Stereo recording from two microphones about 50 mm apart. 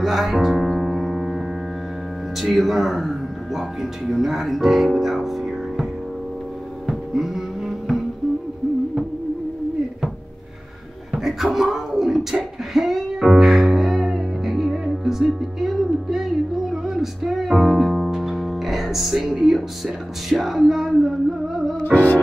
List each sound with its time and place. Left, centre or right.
0.0 s male singing: centre
0.7 s music: centre
2.4 s speech: centre
6.9 s music: centre
11.1 s beatboxing: centre
20.2 s male singing: centre
21.8 s music: left